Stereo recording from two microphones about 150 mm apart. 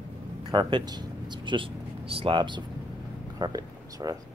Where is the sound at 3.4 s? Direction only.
25° right (ahead or behind).